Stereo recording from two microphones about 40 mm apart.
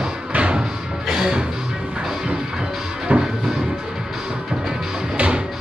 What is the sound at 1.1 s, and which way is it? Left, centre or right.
Music, centre.